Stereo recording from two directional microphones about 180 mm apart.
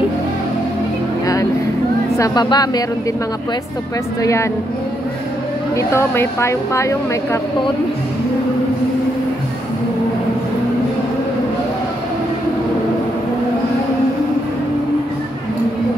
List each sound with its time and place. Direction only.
1.2 s a sound: 20° left (ahead or behind)
2.1 s speech: 20° left (ahead or behind)
4.2 s a woman's voice: 15° left (ahead or behind)
5.8 s a woman's voice: 15° left (ahead or behind)